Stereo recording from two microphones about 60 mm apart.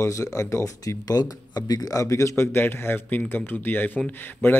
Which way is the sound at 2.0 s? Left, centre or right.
Left.